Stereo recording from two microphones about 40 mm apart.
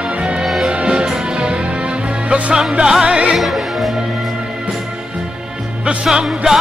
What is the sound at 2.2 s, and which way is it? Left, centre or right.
Music, right.